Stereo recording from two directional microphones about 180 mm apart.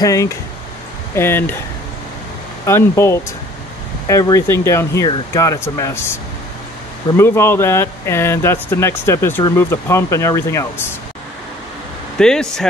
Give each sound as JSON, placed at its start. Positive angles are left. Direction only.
{"t": 0.0, "sound": "speech", "side_deg": 20}
{"t": 2.6, "sound": "speech", "side_deg": 15}
{"t": 7.2, "sound": "speech", "side_deg": 15}
{"t": 12.2, "sound": "speech", "side_deg": 5}